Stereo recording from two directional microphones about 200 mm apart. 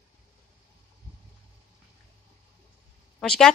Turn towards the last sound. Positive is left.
turn(degrees=5)  # may be behind; listen again after turning